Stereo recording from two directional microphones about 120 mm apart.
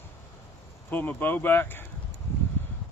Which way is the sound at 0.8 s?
15° left (ahead or behind).